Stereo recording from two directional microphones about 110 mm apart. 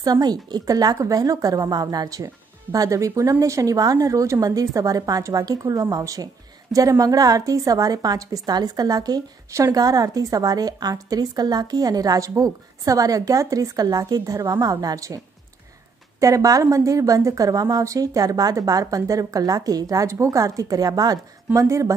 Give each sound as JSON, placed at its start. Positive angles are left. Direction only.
{"t": 0.0, "sound": "a woman's voice", "side_deg": -35}
{"t": 16.2, "sound": "a woman's voice", "side_deg": -30}